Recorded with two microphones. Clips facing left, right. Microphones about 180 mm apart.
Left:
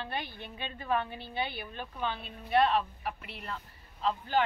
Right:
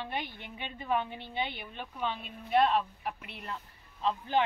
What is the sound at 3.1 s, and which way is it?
Speech, centre (ahead or behind).